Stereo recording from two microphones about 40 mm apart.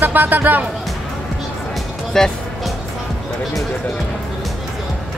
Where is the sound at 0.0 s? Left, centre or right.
Right.